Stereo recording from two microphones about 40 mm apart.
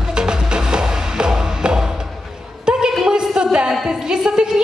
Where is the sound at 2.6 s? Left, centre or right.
Centre.